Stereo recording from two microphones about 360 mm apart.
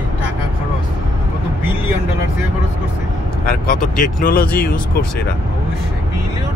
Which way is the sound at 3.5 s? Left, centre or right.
Left.